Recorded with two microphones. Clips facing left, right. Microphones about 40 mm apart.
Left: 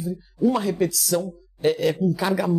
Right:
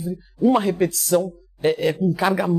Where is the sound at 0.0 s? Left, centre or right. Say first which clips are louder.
Right 2 dB; right.